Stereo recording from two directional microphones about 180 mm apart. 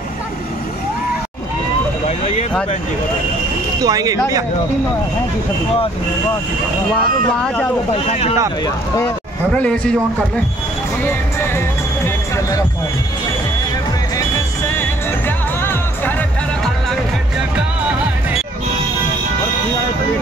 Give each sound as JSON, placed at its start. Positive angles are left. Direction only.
{"t": 2.0, "sound": "a sound", "side_deg": 35}
{"t": 3.8, "sound": "speech", "side_deg": -20}
{"t": 7.9, "sound": "speech", "side_deg": 35}
{"t": 8.6, "sound": "speech", "side_deg": 15}
{"t": 9.5, "sound": "speech", "side_deg": 5}
{"t": 11.1, "sound": "music", "side_deg": 15}
{"t": 14.7, "sound": "music", "side_deg": 15}